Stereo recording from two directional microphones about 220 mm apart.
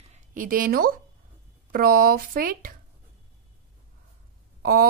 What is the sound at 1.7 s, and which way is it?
Speech, 40° right (ahead or behind).